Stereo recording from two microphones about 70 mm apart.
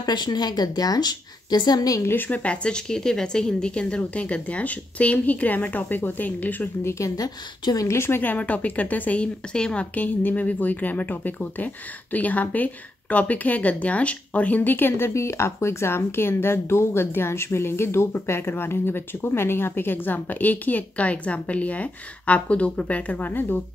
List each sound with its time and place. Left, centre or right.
0.0 s a woman's voice: left
2.0 s speech: left
6.8 s speech: left
7.2 s a woman's voice: left
7.9 s speech: left
8.2 s speech: left